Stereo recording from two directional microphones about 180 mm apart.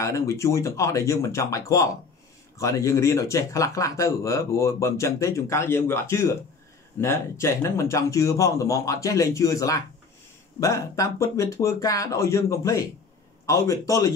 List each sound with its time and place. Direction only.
0.0 s speech: 15° left (ahead or behind)